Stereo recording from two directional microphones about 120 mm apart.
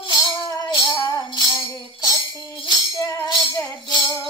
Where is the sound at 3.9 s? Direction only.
30° left (ahead or behind).